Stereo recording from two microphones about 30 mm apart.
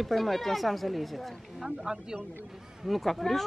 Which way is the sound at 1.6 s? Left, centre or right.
Centre.